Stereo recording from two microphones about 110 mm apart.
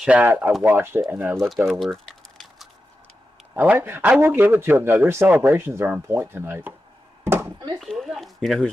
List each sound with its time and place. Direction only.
0.0 s a man's voice: 15° right (ahead or behind)
1.7 s typing: centre (ahead or behind)
3.5 s a man's voice: 20° right (ahead or behind)
7.2 s a sound: 20° right (ahead or behind)
7.8 s speech: centre (ahead or behind)